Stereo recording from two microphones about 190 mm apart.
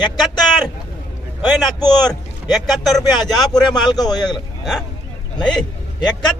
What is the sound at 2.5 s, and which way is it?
Speech, centre (ahead or behind).